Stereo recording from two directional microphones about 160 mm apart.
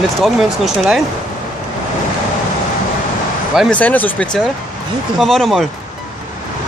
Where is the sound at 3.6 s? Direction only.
5° left (ahead or behind).